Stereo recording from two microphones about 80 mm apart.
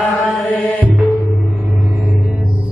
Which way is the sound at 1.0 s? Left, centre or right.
Centre.